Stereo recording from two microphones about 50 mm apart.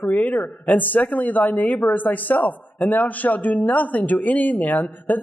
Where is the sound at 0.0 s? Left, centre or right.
Left.